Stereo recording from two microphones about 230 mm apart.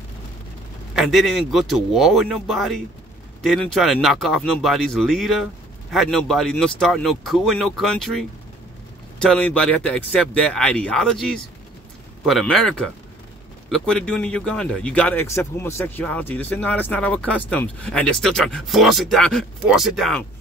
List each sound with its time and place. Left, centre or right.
0.9 s speech: centre